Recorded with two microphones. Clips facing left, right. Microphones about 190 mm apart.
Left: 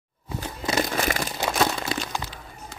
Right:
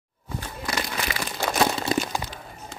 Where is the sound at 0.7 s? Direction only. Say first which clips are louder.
Left 6 dB; 45° left (ahead or behind).